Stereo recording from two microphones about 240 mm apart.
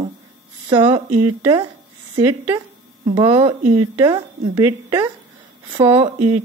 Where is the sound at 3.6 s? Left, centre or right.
Right.